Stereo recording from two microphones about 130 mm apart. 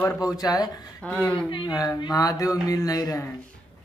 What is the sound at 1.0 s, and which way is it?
Speech, 10° left (ahead or behind).